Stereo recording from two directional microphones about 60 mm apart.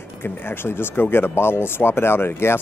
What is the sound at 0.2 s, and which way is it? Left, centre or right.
Speech, left.